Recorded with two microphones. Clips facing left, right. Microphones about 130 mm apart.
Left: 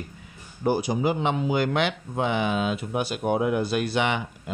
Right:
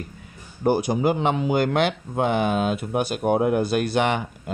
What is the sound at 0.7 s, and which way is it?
Speech, 50° right (ahead or behind).